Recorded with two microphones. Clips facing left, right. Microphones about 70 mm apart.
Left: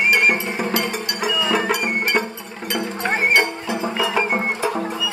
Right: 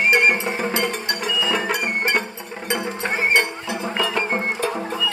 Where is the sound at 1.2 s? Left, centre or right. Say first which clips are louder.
Left 4 dB; centre.